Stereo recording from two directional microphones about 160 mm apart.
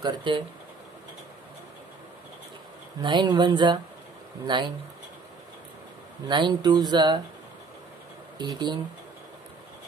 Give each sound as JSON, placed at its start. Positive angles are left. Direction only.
{"t": 0.0, "sound": "speech", "side_deg": -30}
{"t": 3.0, "sound": "speech", "side_deg": -30}
{"t": 6.2, "sound": "speech", "side_deg": -30}
{"t": 8.4, "sound": "speech", "side_deg": -25}